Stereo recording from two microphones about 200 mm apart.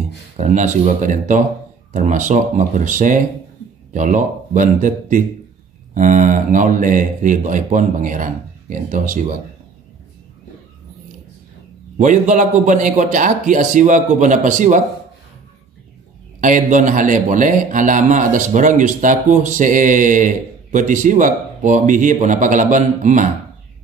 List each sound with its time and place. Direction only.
0.4 s a man's voice: 35° right (ahead or behind)
12.0 s a man's voice: 40° right (ahead or behind)
16.3 s a man's voice: 40° right (ahead or behind)